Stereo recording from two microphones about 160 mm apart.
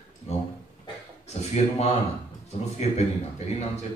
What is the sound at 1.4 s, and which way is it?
A man's voice, 45° left (ahead or behind).